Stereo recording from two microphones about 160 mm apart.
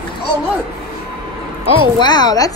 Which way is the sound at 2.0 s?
25° left (ahead or behind).